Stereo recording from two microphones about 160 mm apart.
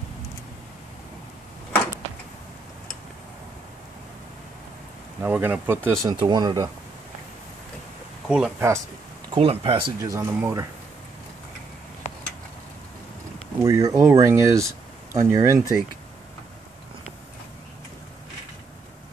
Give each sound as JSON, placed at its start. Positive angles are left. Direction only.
{"t": 5.2, "sound": "speech", "side_deg": -10}
{"t": 5.9, "sound": "speech", "side_deg": -25}
{"t": 8.3, "sound": "speech", "side_deg": -5}
{"t": 9.3, "sound": "speech", "side_deg": -35}
{"t": 10.1, "sound": "speech", "side_deg": -20}
{"t": 13.6, "sound": "speech", "side_deg": -20}